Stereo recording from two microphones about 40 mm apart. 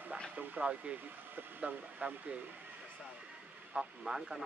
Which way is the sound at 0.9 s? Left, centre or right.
Right.